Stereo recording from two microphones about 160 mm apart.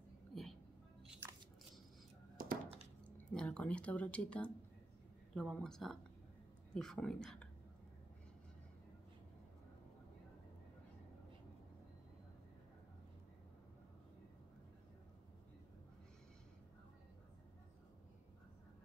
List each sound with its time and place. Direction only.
0.3 s music: centre (ahead or behind)
2.3 s a sound: 60° right (ahead or behind)
3.3 s speech: 5° left (ahead or behind)